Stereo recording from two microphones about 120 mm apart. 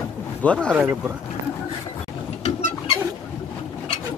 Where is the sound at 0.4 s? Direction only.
10° left (ahead or behind).